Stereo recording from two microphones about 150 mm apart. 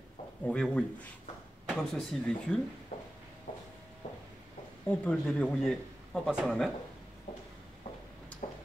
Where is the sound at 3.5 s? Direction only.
65° left (ahead or behind).